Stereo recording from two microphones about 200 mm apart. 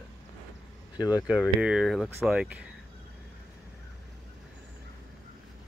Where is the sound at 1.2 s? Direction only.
5° right (ahead or behind).